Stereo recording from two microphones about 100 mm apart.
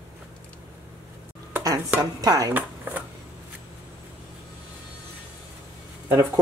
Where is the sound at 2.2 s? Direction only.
40° right (ahead or behind).